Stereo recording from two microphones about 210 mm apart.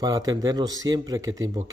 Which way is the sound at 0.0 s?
15° right (ahead or behind).